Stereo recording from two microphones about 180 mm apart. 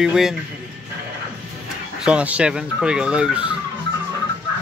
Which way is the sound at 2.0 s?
5° right (ahead or behind).